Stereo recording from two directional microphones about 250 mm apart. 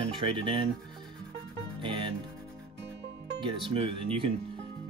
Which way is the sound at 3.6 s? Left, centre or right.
Right.